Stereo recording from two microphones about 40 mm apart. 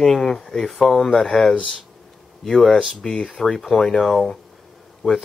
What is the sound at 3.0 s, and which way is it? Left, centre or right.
Speech, left.